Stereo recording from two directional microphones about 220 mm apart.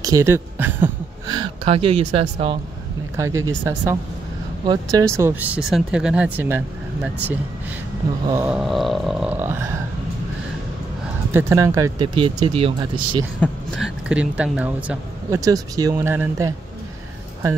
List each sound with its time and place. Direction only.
0.0 s speech: 15° right (ahead or behind)
3.2 s speech: 15° right (ahead or behind)
8.3 s a sound: 10° right (ahead or behind)
11.3 s speech: 15° right (ahead or behind)
13.4 s speech: centre (ahead or behind)